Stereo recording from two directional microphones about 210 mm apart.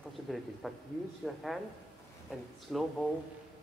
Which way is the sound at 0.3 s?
Centre (ahead or behind).